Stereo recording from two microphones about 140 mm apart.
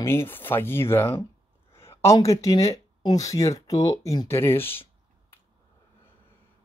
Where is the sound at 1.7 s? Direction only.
20° left (ahead or behind).